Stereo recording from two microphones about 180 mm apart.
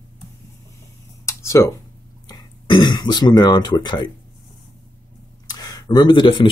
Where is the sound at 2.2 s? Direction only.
25° left (ahead or behind).